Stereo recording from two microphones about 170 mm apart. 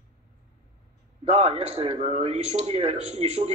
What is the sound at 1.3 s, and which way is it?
A man's voice, 35° right (ahead or behind).